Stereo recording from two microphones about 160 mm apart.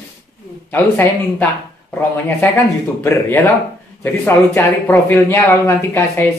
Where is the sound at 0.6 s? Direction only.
10° left (ahead or behind).